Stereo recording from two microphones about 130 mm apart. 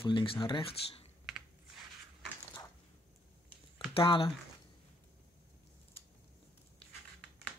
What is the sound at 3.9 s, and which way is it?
Speech, 45° left (ahead or behind).